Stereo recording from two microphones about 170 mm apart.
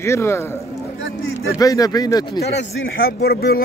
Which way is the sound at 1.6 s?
20° left (ahead or behind).